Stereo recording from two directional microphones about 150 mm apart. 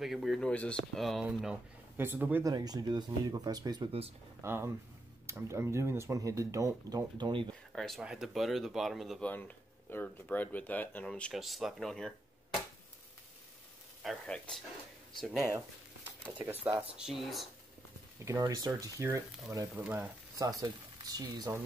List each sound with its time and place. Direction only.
0.0 s speech: centre (ahead or behind)
2.4 s speech: 25° right (ahead or behind)
4.4 s speech: 15° right (ahead or behind)
7.7 s speech: centre (ahead or behind)
9.8 s speech: 10° left (ahead or behind)
14.0 s speech: 5° left (ahead or behind)
16.9 s speech: 5° right (ahead or behind)
18.2 s speech: 25° right (ahead or behind)
20.3 s speech: 25° right (ahead or behind)